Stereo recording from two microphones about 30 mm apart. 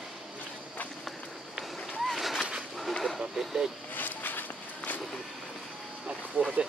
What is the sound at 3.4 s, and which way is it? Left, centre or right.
Speech, centre.